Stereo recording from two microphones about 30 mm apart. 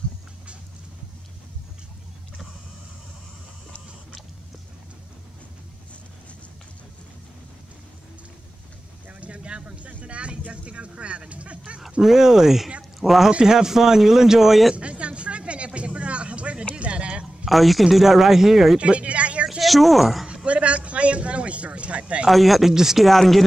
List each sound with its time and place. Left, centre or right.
9.1 s speech: right
12.0 s speech: centre
14.8 s a sound: right
17.5 s speech: centre
18.8 s a sound: right
19.6 s speech: centre
20.4 s a sound: right
22.3 s speech: centre
22.7 s speech: centre
23.0 s speech: centre